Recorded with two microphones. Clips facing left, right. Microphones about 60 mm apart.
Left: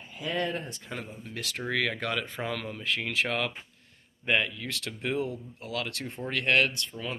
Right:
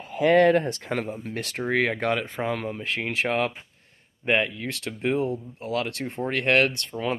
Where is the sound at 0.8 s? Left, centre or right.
Right.